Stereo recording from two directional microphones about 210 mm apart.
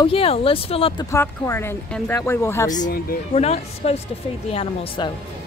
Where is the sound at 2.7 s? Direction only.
40° left (ahead or behind).